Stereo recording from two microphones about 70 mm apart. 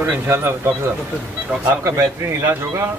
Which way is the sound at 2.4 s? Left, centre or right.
Right.